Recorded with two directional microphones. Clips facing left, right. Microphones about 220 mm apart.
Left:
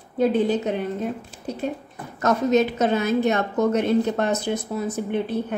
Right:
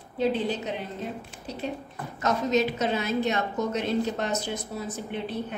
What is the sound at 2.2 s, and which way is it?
A woman's voice, 50° left (ahead or behind).